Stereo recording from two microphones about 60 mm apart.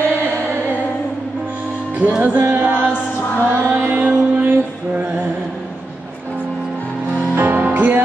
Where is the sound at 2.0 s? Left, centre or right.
Right.